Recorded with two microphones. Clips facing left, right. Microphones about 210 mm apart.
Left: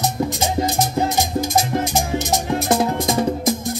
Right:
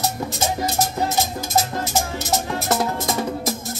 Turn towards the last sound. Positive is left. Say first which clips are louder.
# left 5 dB
turn(degrees=15)  # may be behind; listen again after turning